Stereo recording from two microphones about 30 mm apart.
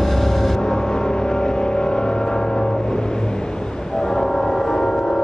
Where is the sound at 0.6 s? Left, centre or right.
Left.